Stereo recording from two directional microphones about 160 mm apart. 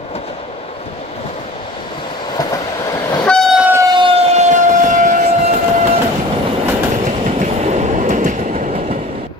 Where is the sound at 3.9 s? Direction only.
35° right (ahead or behind); by 5.1 s 50° right (ahead or behind).